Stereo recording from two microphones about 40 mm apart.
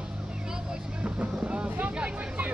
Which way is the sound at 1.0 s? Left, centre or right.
Right.